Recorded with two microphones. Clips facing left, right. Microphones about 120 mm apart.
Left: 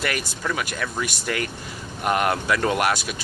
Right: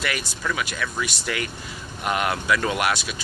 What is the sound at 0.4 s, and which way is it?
Speech, 30° left (ahead or behind).